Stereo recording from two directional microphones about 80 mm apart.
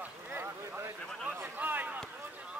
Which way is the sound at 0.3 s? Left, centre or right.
Right.